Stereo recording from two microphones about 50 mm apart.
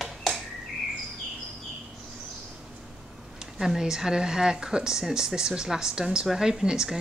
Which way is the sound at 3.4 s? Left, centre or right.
Centre.